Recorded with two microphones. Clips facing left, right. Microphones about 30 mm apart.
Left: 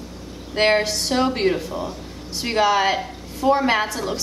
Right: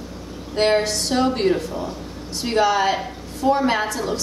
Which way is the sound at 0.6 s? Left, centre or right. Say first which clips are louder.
Even; centre.